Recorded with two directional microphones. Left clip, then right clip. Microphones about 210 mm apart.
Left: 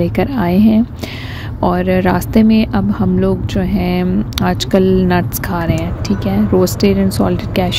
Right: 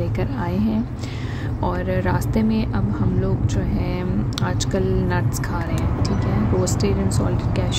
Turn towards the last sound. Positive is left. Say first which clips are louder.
# left 9 dB
turn(degrees=35)  # may be behind; listen again after turning